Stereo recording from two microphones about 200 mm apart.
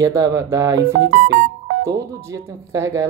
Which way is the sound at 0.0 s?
15° right (ahead or behind).